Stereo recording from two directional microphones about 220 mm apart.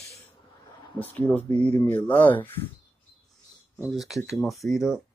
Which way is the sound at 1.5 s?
30° right (ahead or behind).